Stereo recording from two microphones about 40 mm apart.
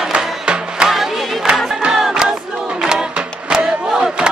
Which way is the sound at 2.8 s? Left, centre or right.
Centre.